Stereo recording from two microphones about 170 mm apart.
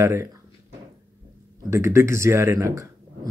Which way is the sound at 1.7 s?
15° right (ahead or behind).